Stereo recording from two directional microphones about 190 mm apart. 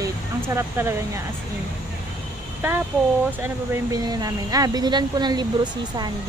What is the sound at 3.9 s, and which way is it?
Speech, 20° right (ahead or behind).